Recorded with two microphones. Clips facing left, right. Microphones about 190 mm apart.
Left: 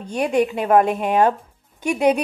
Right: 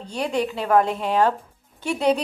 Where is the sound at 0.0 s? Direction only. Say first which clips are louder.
Left 5 dB; 20° left (ahead or behind).